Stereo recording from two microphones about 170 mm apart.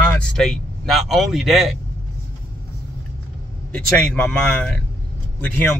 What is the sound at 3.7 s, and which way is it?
Speech, 5° left (ahead or behind).